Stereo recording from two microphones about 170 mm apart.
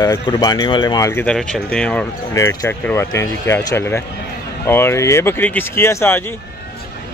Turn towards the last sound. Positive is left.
turn(degrees=15)  # may be behind; listen again after turning